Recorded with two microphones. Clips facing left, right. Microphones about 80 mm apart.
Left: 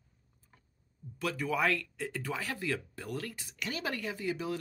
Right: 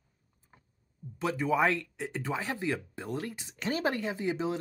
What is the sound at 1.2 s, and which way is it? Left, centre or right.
Speech, right.